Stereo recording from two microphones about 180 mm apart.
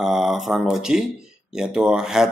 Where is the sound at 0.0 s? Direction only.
Centre (ahead or behind).